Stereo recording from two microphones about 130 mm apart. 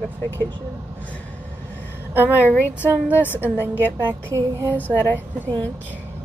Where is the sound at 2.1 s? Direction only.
15° right (ahead or behind).